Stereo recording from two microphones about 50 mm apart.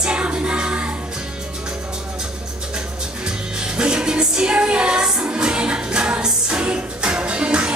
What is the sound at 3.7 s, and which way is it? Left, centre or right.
Music, centre.